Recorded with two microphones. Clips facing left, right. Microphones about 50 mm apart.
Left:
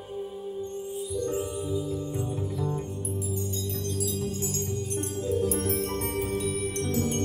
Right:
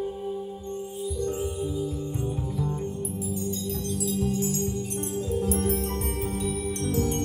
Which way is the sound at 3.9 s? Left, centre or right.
Right.